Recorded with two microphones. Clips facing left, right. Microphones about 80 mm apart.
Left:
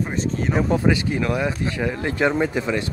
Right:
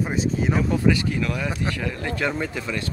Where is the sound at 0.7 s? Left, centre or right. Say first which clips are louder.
Left 1 dB; left.